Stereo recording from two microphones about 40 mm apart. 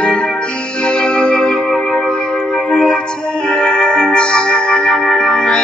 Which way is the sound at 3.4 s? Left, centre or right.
Left.